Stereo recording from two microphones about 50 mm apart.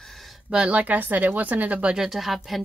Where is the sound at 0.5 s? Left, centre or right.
Centre.